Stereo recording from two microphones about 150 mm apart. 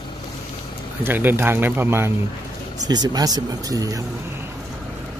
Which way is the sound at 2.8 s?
25° right (ahead or behind).